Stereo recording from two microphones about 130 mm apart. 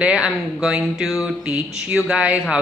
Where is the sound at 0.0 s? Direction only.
5° right (ahead or behind).